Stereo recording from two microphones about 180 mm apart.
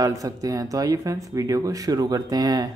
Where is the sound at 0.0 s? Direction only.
20° right (ahead or behind).